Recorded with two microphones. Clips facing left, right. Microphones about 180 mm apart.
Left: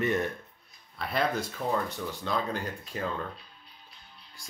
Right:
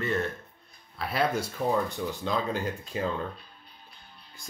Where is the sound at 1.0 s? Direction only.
5° right (ahead or behind).